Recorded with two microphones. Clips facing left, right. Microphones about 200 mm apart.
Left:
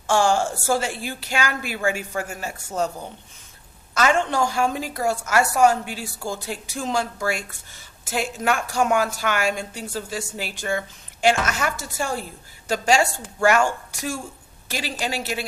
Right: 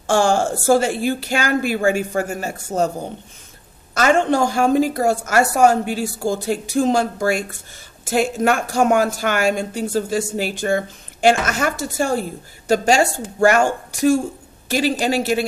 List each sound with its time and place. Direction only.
0.0 s a woman's voice: 50° right (ahead or behind)